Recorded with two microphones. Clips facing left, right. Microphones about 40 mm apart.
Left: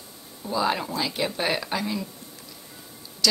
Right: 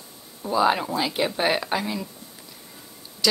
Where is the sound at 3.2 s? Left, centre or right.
Centre.